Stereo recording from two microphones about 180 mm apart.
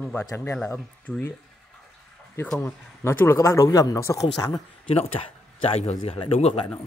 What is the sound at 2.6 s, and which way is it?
Speech, 15° left (ahead or behind).